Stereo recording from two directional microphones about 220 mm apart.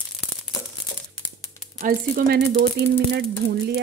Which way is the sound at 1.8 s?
40° right (ahead or behind).